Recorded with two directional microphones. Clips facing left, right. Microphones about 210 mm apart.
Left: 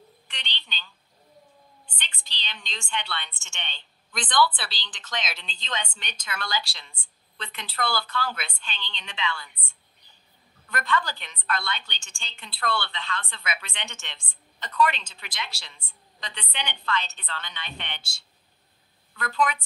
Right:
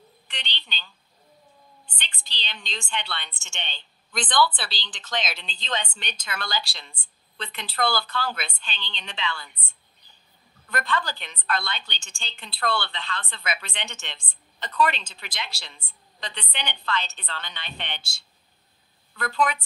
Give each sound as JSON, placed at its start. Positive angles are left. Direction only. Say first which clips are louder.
{"t": 0.3, "sound": "telephone", "louder": "right 3 dB", "side_deg": -35}
{"t": 2.0, "sound": "a woman's voice", "louder": "right 2 dB", "side_deg": -30}
{"t": 10.7, "sound": "a woman's voice", "louder": "even", "side_deg": -35}